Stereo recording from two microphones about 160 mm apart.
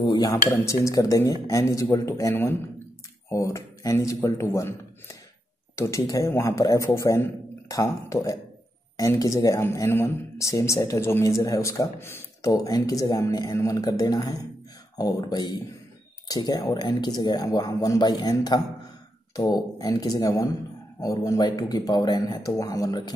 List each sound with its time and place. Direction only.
0.0 s speech: 25° left (ahead or behind)